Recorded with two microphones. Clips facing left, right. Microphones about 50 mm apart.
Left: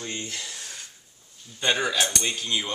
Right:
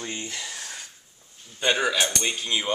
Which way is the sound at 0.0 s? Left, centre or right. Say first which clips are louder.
Right 1 dB; centre.